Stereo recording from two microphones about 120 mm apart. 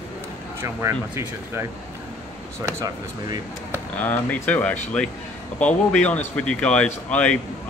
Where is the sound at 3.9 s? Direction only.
10° left (ahead or behind).